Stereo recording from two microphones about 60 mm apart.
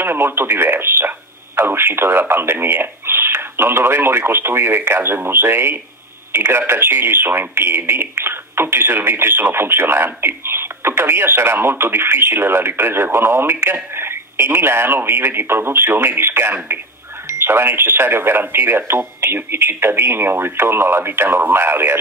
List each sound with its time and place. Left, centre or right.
0.0 s speech: right